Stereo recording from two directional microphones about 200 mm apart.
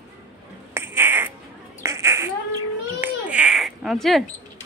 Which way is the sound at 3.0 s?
5° right (ahead or behind).